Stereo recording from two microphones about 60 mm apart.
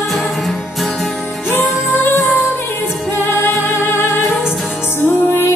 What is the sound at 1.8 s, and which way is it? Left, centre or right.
Music, left.